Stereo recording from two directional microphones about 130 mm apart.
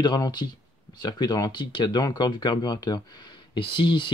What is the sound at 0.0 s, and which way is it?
Speech, 35° left (ahead or behind).